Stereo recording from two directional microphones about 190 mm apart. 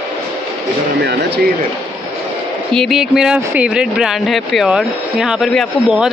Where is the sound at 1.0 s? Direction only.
60° right (ahead or behind).